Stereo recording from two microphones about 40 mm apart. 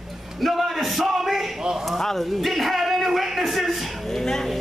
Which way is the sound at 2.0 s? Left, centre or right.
Centre.